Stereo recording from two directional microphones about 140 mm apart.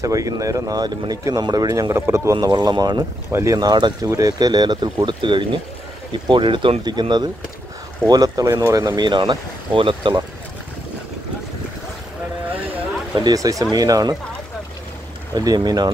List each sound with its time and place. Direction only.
0.0 s speech: 25° right (ahead or behind)
3.3 s speech: 15° right (ahead or behind)
3.5 s speech: 30° right (ahead or behind)
13.2 s speech: 25° right (ahead or behind)
15.3 s speech: 30° right (ahead or behind)